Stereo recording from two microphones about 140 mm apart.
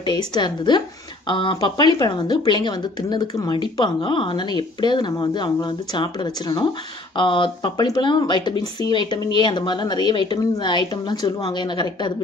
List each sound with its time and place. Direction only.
0.3 s speech: 35° left (ahead or behind)